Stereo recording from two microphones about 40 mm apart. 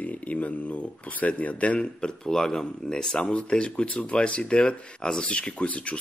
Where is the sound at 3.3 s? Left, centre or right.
Left.